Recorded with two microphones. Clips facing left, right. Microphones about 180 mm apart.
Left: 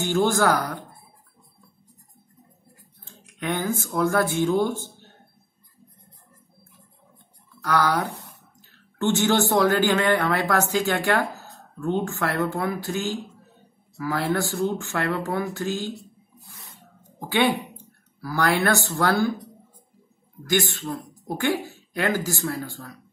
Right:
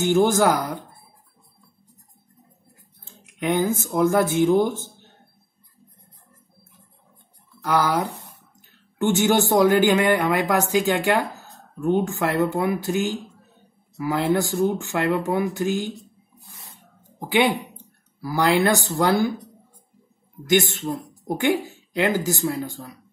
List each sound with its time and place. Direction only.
0.0 s speech: 20° right (ahead or behind)
3.3 s speech: 20° right (ahead or behind)
7.6 s speech: 20° right (ahead or behind)
17.3 s speech: 15° right (ahead or behind)
20.4 s speech: 20° right (ahead or behind)